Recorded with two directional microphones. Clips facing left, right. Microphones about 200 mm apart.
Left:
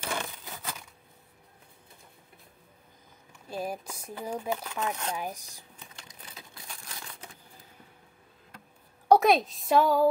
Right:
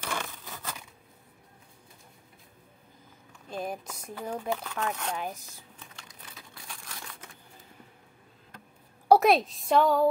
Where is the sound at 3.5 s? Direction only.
5° left (ahead or behind).